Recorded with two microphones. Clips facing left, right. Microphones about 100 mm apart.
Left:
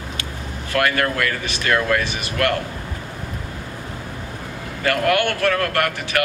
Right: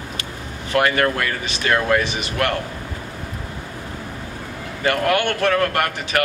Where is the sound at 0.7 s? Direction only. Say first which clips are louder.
Right 2 dB; 20° right (ahead or behind).